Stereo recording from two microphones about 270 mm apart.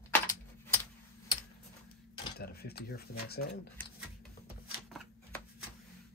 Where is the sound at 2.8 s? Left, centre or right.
Left.